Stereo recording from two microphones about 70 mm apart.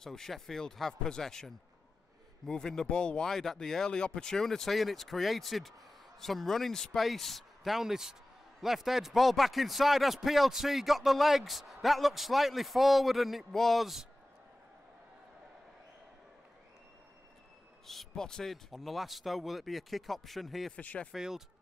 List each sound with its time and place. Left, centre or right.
0.0 s a man's voice: centre
17.8 s a man's voice: centre
20.7 s speech: centre
21.1 s a man's voice: centre